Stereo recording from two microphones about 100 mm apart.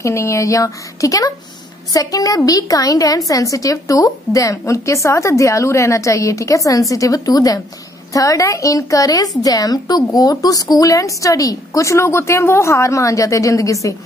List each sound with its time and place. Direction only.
0.0 s a woman's voice: 30° left (ahead or behind)